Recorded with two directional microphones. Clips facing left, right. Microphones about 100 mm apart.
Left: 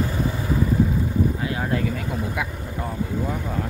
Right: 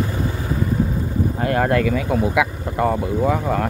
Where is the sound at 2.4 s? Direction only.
85° right.